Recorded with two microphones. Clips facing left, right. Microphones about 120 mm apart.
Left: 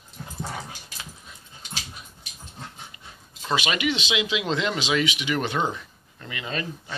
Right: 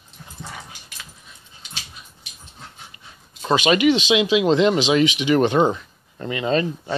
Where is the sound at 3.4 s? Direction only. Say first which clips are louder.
Right 9 dB; 20° right (ahead or behind).